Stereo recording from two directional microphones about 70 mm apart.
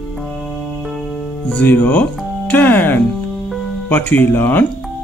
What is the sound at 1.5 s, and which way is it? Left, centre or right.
Speech, left.